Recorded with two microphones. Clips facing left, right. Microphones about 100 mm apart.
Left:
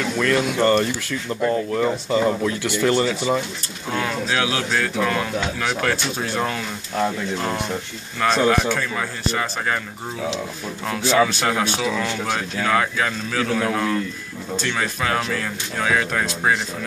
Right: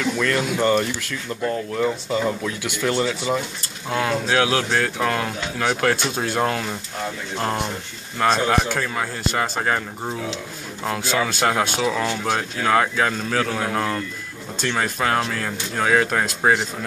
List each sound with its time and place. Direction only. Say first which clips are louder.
0.0 s speech: left 2 dB; centre (ahead or behind)
4.3 s a man's voice: right 3 dB; 40° right (ahead or behind)
8.2 s speech: left 1 dB; 30° right (ahead or behind)
10.9 s a man's voice: left 4 dB; 30° right (ahead or behind)